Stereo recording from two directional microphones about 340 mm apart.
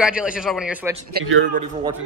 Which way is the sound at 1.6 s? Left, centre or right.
Centre.